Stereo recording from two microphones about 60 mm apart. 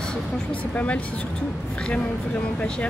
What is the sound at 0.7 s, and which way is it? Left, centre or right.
Speech, left.